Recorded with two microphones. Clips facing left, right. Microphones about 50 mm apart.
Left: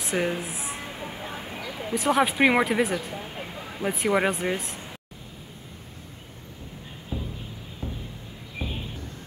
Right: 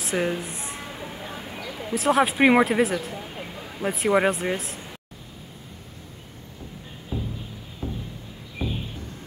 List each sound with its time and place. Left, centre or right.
0.0 s speech: centre
0.8 s a sound: centre
3.1 s speech: centre
7.1 s music: centre